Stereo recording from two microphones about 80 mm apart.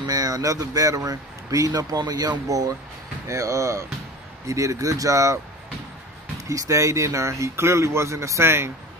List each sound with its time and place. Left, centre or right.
0.0 s speech: right
3.3 s speech: right
6.5 s speech: right